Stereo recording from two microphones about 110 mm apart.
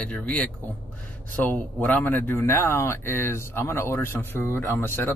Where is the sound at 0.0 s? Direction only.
10° left (ahead or behind).